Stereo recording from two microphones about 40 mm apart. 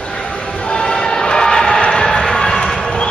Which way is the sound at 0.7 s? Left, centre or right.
Left.